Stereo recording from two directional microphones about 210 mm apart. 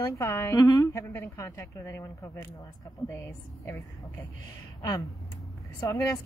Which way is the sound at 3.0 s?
Centre (ahead or behind).